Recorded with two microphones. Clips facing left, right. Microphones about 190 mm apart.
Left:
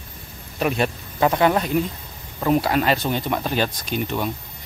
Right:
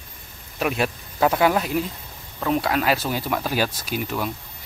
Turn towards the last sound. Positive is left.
turn(degrees=-5)  # may be behind; listen again after turning